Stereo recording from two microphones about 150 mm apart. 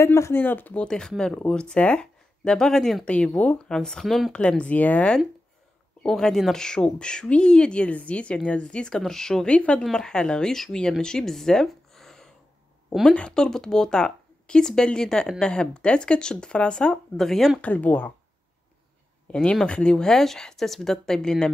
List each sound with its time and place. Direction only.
0.0 s speech: 20° left (ahead or behind)
19.3 s speech: 5° left (ahead or behind)